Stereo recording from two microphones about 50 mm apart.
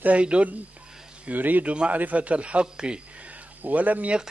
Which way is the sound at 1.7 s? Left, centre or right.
Right.